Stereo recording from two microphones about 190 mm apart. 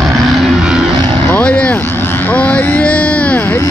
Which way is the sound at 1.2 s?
5° left (ahead or behind).